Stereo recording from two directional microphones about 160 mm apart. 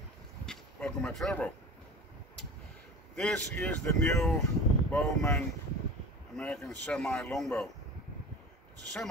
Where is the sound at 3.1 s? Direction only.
5° left (ahead or behind).